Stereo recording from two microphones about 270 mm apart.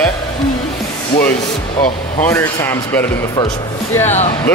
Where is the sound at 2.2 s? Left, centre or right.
Centre.